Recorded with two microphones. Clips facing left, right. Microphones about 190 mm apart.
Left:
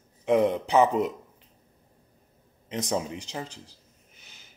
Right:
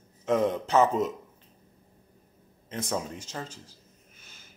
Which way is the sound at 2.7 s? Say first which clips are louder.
Left 3 dB; 20° left (ahead or behind).